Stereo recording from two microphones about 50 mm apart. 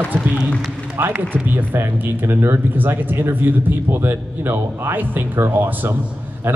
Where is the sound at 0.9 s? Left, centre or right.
Right.